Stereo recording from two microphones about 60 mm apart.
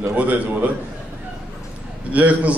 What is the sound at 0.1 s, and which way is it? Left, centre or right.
Speech, right.